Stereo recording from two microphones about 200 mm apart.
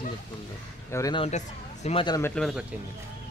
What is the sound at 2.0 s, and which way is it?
Speech, 20° left (ahead or behind).